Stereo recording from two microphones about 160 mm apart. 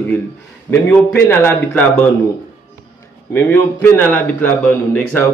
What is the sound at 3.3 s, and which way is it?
Speech, 10° left (ahead or behind).